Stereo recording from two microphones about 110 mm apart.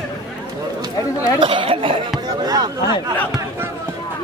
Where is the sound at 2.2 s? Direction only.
35° right (ahead or behind).